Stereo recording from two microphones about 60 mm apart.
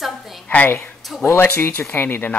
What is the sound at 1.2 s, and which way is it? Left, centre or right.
Speech, left.